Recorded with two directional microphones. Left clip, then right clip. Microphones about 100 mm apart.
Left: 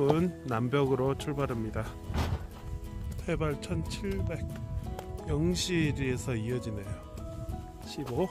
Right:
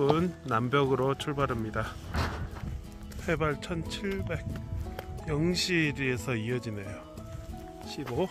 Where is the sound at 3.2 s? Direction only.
Centre (ahead or behind).